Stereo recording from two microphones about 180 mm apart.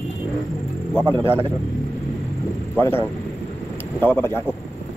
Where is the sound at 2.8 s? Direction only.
10° left (ahead or behind).